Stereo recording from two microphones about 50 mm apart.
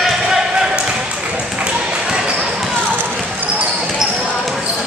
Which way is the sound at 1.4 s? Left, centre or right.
Right.